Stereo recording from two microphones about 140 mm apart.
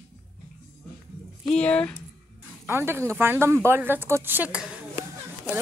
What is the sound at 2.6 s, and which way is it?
Speech, 15° right (ahead or behind).